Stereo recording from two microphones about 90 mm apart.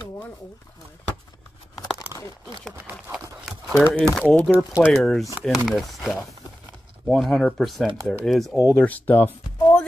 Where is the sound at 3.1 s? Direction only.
5° right (ahead or behind).